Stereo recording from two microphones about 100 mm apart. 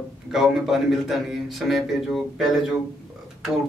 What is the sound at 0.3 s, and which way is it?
Speech, centre (ahead or behind).